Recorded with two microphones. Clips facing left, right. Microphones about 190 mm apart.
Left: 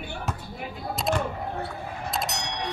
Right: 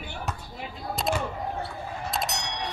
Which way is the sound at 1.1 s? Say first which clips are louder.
Left 2 dB; centre (ahead or behind).